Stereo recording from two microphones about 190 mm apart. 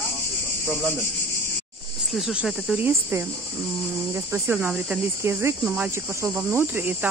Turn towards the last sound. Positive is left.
turn(degrees=-10)  # may be behind; listen again after turning